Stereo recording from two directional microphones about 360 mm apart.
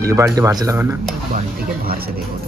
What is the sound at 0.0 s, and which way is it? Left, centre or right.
Speech, centre.